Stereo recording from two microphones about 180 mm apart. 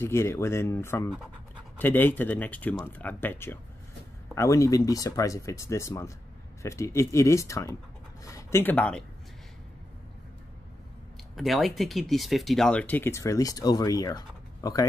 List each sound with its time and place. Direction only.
0.0 s speech: 15° left (ahead or behind)
11.3 s speech: centre (ahead or behind); by 14.9 s 20° left (ahead or behind)